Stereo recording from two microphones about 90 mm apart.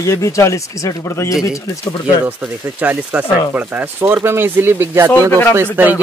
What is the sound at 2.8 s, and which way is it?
Speech, 15° right (ahead or behind).